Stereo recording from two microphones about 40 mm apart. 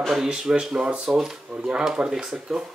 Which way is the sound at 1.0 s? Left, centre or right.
Centre.